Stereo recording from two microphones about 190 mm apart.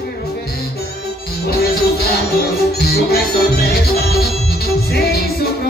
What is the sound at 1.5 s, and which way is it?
Music, 55° left (ahead or behind).